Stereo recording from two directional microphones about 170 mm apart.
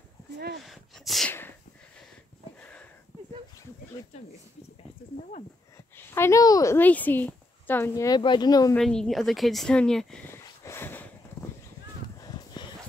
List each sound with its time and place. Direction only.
0.7 s a woman's voice: centre (ahead or behind)
4.1 s speech: 40° left (ahead or behind)
5.9 s a woman's voice: 15° left (ahead or behind)
8.2 s speech: 25° left (ahead or behind)
8.7 s a woman's voice: 5° left (ahead or behind)
10.3 s a sound: 15° left (ahead or behind)